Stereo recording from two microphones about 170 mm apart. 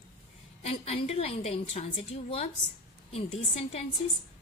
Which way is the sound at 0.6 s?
35° left (ahead or behind).